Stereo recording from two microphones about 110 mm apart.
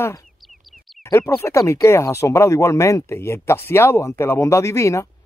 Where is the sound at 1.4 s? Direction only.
25° left (ahead or behind).